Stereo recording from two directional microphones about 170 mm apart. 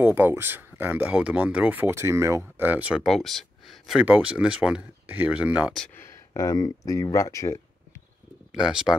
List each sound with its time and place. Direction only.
0.0 s speech: 10° right (ahead or behind)
3.0 s speech: centre (ahead or behind)
5.9 s speech: 15° left (ahead or behind)
8.5 s speech: 5° right (ahead or behind)